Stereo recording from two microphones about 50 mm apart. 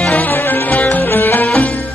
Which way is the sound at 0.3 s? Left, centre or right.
Left.